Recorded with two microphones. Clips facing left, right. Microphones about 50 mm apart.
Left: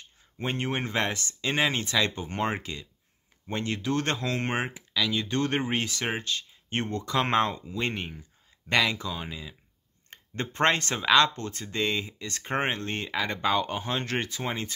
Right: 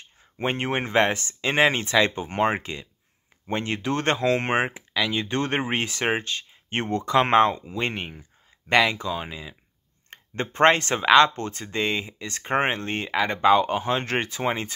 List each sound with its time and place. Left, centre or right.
0.4 s speech: right